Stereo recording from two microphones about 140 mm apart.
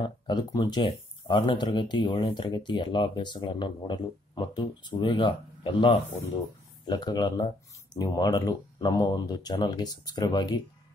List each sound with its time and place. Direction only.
0.0 s speech: 30° left (ahead or behind)